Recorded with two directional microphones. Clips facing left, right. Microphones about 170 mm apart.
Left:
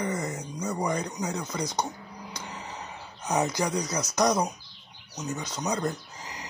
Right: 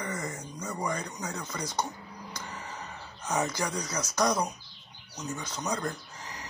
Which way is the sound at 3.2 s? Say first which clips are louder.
Left 4 dB; 15° left (ahead or behind).